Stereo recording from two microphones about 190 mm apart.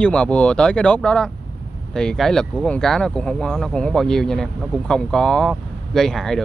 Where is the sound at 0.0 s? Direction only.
5° left (ahead or behind).